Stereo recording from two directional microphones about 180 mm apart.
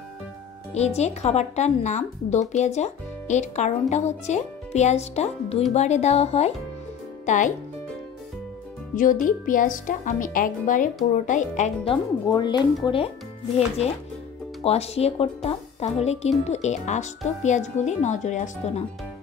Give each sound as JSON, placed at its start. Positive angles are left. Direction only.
{"t": 0.7, "sound": "a woman's voice", "side_deg": 35}
{"t": 8.9, "sound": "a woman's voice", "side_deg": 45}
{"t": 11.9, "sound": "speech", "side_deg": 25}
{"t": 14.6, "sound": "speech", "side_deg": 35}